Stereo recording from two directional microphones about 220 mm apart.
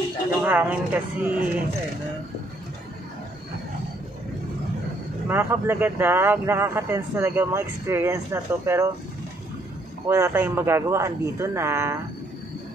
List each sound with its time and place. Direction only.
0.4 s speech: 5° right (ahead or behind)
5.3 s speech: 10° right (ahead or behind)
10.0 s speech: 10° right (ahead or behind)